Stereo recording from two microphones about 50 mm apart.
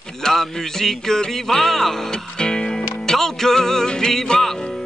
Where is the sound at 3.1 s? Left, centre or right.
Centre.